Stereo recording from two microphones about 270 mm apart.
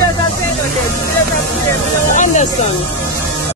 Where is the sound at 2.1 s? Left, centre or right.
Left.